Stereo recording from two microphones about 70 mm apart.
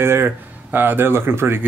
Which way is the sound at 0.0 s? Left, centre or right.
Right.